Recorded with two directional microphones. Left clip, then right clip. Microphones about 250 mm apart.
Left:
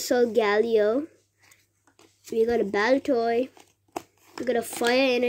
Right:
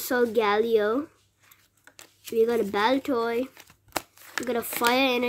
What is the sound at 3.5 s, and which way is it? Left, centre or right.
Crumpling, right.